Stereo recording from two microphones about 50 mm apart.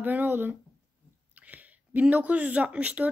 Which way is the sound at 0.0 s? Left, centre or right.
Right.